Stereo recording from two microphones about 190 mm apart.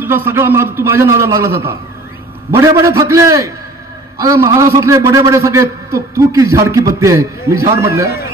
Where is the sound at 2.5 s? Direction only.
15° right (ahead or behind).